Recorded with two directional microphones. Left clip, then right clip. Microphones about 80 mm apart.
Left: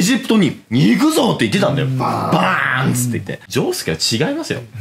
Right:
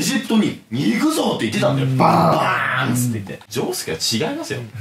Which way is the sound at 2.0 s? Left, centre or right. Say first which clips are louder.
Right 5 dB; right.